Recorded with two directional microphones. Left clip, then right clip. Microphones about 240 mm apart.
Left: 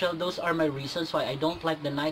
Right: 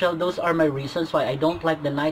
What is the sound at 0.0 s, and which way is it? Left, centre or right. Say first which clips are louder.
A man's voice: right 6 dB; centre.